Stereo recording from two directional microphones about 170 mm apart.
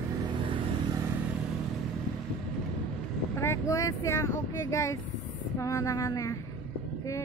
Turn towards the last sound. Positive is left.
turn(degrees=20)  # may be behind; listen again after turning